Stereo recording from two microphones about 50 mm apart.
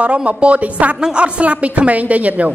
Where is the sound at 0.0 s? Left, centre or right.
Right.